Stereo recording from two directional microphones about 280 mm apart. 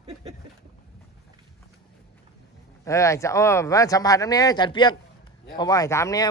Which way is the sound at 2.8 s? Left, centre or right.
Centre.